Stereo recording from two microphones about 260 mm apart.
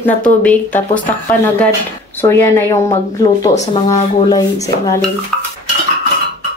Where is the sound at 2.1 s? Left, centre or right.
Centre.